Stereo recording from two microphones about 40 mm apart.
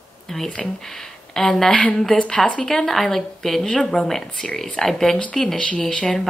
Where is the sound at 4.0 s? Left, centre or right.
Left.